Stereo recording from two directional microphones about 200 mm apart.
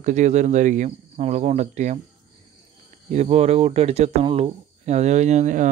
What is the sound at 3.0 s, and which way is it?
Speech, 35° right (ahead or behind).